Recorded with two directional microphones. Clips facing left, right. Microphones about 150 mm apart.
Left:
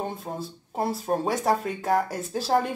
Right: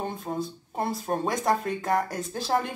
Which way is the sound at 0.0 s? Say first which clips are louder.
Right 1 dB; centre (ahead or behind).